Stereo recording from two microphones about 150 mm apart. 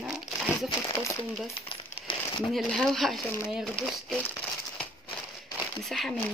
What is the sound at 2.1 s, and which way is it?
Crumpling, 35° left (ahead or behind).